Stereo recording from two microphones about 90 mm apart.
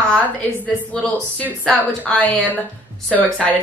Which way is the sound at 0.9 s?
10° left (ahead or behind).